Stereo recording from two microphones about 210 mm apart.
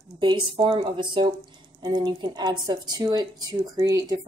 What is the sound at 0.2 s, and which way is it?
A woman's voice, 20° right (ahead or behind).